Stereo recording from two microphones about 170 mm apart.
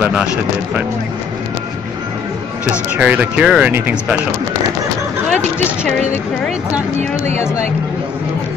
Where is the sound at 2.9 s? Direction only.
10° right (ahead or behind).